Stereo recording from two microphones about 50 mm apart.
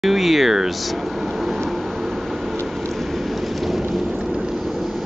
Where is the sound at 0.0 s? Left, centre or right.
Centre.